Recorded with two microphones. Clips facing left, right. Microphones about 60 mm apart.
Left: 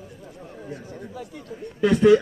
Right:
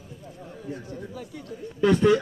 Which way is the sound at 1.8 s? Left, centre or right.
Centre.